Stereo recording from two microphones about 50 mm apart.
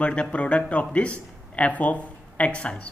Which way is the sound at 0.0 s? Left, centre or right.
Left.